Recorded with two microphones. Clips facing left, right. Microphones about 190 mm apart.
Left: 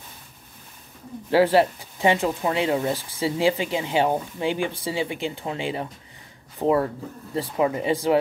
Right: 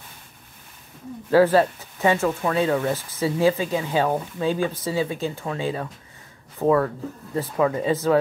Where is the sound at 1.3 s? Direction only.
15° left (ahead or behind).